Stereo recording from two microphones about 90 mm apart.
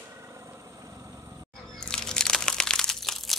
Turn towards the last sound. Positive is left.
turn(degrees=5)  # may be behind; listen again after turning